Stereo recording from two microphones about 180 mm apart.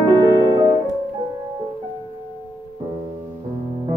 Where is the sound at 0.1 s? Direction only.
25° right (ahead or behind).